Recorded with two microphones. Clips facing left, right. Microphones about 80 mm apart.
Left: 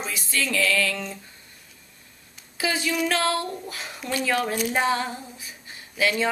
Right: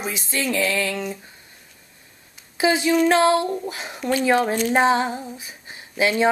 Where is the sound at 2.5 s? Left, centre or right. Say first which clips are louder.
Right 7 dB; right.